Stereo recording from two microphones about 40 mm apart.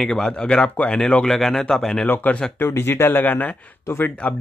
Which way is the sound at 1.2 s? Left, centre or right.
Centre.